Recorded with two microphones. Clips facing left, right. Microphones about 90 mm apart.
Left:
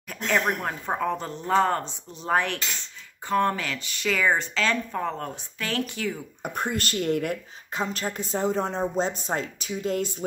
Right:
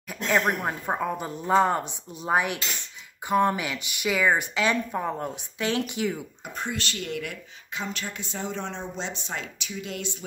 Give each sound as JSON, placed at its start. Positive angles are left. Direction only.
{"t": 0.1, "sound": "speech", "side_deg": -10}
{"t": 6.4, "sound": "speech", "side_deg": 50}